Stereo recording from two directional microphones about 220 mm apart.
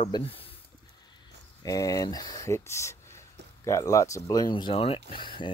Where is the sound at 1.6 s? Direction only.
15° left (ahead or behind).